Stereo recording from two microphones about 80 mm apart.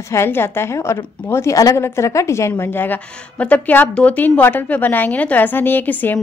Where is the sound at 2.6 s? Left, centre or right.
Left.